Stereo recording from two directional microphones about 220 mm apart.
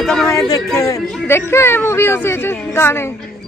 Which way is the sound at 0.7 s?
15° left (ahead or behind).